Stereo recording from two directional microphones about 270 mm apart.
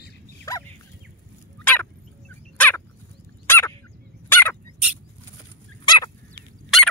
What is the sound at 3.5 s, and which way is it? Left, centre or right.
Dog, centre.